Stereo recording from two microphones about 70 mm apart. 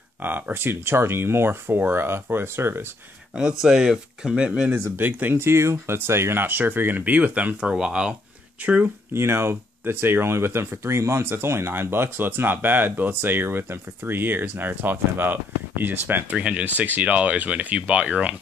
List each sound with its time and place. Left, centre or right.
0.2 s speech: right
3.6 s speech: centre
4.9 s speech: right
9.1 s speech: right; by 18.3 s centre